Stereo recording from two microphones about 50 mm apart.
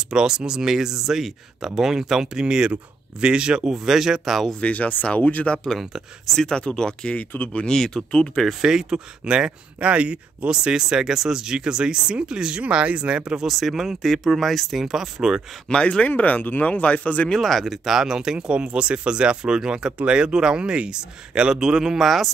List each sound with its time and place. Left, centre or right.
0.1 s speech: centre
4.5 s speech: left
5.5 s speech: centre
7.2 s speech: left
7.6 s speech: centre
8.4 s speech: centre; by 13.5 s right
13.5 s speech: centre
15.7 s speech: centre
16.1 s speech: left
17.3 s speech: centre
17.9 s speech: centre